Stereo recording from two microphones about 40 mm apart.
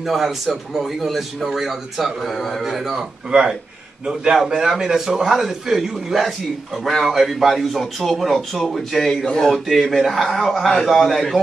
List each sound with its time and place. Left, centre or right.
0.0 s a man's voice: centre
3.3 s a man's voice: right; by 9.2 s centre
9.2 s speech: centre
9.5 s a man's voice: centre